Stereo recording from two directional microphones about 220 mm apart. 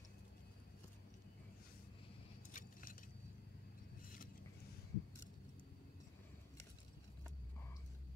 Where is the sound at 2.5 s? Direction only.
40° left (ahead or behind).